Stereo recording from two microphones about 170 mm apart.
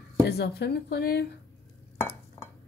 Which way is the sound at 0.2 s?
75° left (ahead or behind).